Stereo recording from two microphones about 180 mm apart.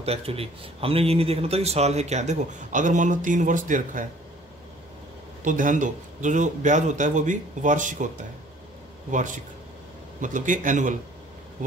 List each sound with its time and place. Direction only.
0.0 s speech: 35° right (ahead or behind)
5.4 s a man's voice: 45° right (ahead or behind)
9.1 s a man's voice: 45° right (ahead or behind)